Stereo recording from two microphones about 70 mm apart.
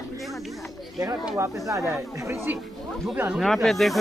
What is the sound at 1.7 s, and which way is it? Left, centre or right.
Speech, right.